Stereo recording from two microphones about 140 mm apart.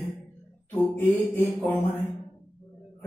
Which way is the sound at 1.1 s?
20° left (ahead or behind).